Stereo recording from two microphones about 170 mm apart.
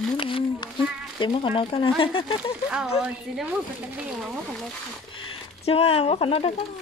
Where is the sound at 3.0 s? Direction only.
5° right (ahead or behind).